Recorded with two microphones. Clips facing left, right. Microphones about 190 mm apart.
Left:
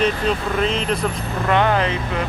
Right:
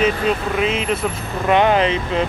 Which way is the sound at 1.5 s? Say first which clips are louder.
Right 3 dB; 20° right (ahead or behind).